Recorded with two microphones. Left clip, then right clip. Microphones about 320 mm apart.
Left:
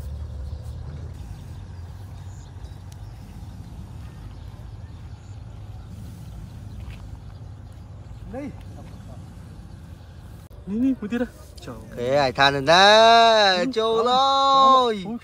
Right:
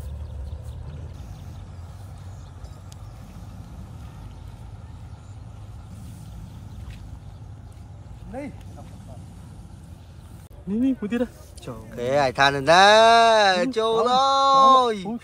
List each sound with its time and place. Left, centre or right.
10.7 s speech: right
11.9 s speech: centre